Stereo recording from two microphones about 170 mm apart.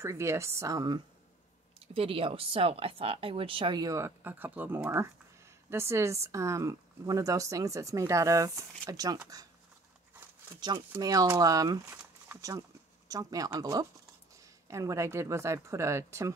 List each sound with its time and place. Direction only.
0.0 s speech: 15° right (ahead or behind)
10.9 s speech: 20° right (ahead or behind)